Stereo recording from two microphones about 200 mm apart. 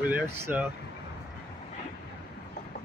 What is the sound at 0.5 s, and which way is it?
Speech, 10° right (ahead or behind).